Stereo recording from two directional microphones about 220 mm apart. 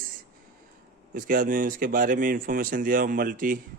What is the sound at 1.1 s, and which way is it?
Speech, 40° right (ahead or behind).